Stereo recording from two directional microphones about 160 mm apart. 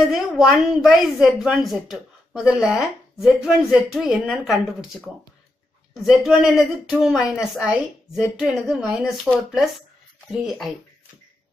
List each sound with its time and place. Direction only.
0.0 s a woman's voice: centre (ahead or behind)
6.0 s a woman's voice: centre (ahead or behind)